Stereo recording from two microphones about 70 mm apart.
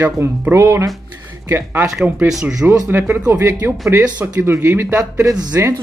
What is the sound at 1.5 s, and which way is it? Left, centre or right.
Speech, right.